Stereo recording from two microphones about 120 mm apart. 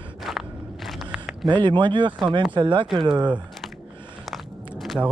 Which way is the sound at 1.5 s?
40° right (ahead or behind).